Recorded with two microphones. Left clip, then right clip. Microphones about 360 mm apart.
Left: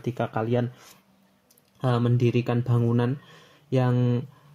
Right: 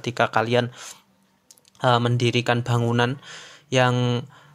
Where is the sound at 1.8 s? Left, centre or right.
Right.